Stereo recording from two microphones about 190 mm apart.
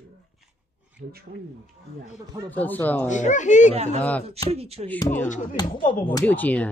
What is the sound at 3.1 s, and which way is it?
Speech, 40° left (ahead or behind).